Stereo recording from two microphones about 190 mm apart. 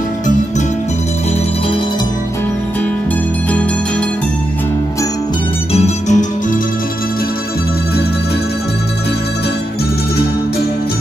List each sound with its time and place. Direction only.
5.7 s music: 35° left (ahead or behind)